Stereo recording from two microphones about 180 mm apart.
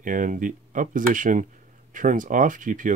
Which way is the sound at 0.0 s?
45° right (ahead or behind).